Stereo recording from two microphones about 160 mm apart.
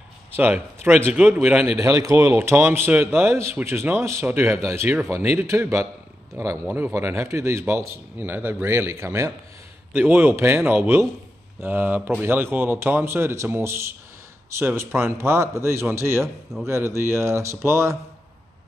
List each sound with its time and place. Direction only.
0.3 s a man's voice: 15° right (ahead or behind)